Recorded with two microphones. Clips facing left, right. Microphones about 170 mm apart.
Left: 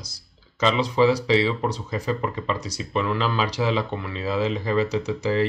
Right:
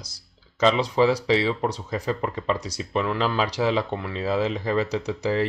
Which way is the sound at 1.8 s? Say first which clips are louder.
Even; 40° right (ahead or behind).